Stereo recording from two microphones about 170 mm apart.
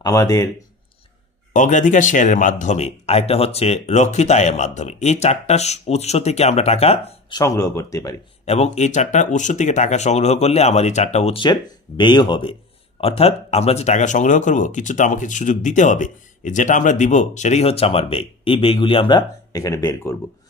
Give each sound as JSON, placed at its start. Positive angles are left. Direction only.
{"t": 0.0, "sound": "speech", "side_deg": 20}
{"t": 1.5, "sound": "speech", "side_deg": 50}
{"t": 7.3, "sound": "speech", "side_deg": 15}
{"t": 8.5, "sound": "speech", "side_deg": 40}